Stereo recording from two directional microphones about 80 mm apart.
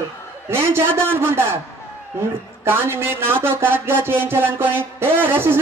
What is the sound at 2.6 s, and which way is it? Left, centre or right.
Speech, right.